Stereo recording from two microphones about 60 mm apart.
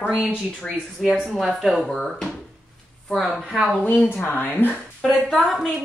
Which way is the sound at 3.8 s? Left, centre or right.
Left.